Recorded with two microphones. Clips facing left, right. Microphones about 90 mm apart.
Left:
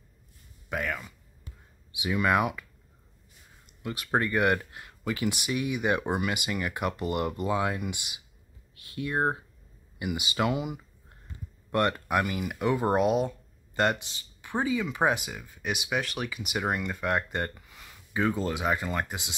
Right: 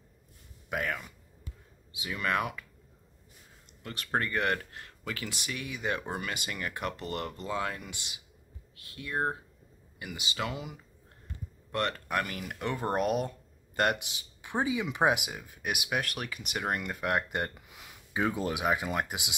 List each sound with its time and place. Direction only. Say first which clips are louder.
0.7 s a sound: left 1 dB; centre (ahead or behind)
2.0 s speech: left 6 dB; 15° left (ahead or behind)
3.8 s speech: left 4 dB; 5° left (ahead or behind); by 19.3 s 10° right (ahead or behind)